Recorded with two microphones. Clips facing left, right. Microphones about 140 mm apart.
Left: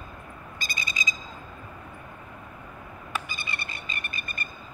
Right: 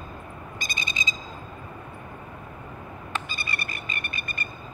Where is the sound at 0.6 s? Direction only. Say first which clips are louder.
Even; 25° right (ahead or behind).